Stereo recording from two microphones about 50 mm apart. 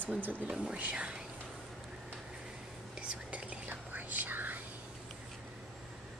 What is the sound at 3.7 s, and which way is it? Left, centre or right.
Whispering, right.